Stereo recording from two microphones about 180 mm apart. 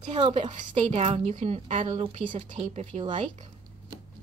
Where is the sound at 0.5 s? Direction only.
35° right (ahead or behind).